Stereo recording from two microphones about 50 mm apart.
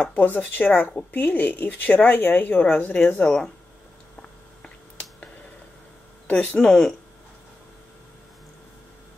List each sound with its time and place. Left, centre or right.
0.1 s speech: left
6.2 s speech: left
6.7 s speech: centre